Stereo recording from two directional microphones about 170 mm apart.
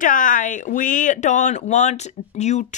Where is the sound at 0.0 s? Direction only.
50° left (ahead or behind).